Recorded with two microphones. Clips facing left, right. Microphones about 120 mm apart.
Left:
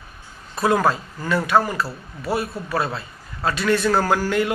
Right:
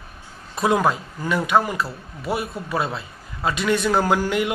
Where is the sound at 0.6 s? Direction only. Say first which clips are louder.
Left 1 dB; 15° right (ahead or behind).